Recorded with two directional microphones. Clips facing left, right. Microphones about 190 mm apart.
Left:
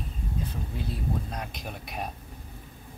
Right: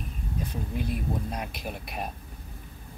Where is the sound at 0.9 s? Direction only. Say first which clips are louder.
Right 2 dB; 10° right (ahead or behind).